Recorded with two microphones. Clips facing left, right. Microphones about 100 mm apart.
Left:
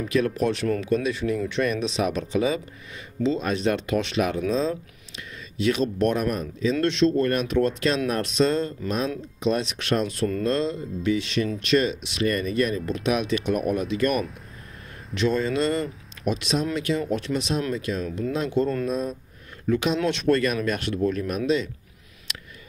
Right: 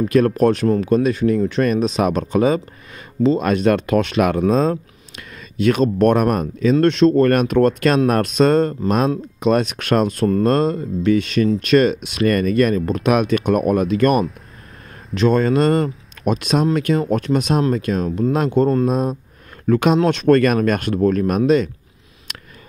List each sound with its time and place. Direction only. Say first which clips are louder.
0.0 s speech: right 8 dB; 45° right (ahead or behind)
3.3 s speech: right 8 dB; 60° right (ahead or behind)